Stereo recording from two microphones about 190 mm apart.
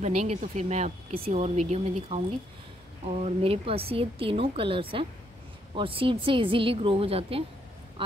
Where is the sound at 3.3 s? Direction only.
30° right (ahead or behind).